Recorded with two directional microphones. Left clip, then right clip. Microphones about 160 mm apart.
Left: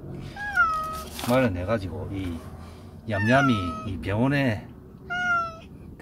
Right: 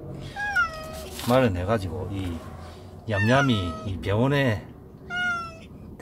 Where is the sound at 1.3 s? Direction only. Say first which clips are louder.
Right 2 dB; 40° right (ahead or behind).